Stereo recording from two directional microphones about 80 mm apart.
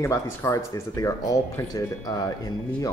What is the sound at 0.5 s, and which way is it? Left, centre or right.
Speech, left.